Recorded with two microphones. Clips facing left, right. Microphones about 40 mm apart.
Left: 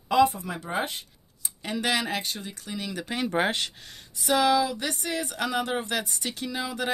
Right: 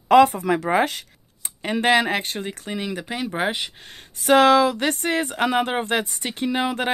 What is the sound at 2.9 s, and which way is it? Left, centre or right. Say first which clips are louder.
Speech: right 1 dB; centre.